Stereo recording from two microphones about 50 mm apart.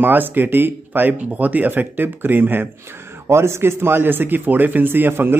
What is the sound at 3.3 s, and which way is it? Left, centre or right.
Speech, right.